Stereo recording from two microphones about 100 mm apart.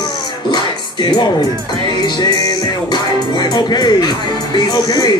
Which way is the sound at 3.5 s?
40° left (ahead or behind).